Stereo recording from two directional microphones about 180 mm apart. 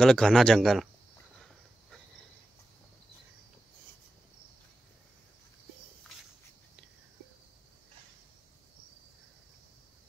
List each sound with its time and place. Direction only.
0.0 s speech: 5° left (ahead or behind)